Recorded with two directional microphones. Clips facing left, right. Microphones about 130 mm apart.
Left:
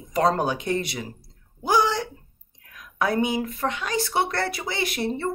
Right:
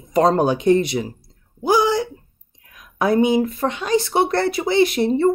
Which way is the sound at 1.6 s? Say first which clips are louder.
Right 5 dB; 10° right (ahead or behind).